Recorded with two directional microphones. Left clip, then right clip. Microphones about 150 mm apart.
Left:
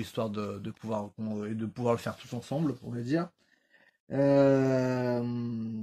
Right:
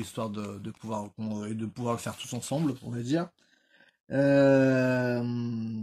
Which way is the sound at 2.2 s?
20° right (ahead or behind).